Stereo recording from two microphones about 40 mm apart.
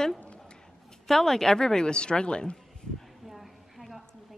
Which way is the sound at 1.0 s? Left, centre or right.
Centre.